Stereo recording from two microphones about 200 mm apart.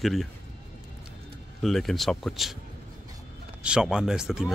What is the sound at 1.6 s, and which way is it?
Speech, centre (ahead or behind).